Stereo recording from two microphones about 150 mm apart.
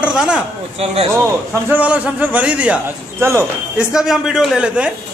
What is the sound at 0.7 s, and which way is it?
Speech, 40° right (ahead or behind).